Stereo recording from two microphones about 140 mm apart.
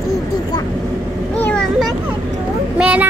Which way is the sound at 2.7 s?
10° right (ahead or behind).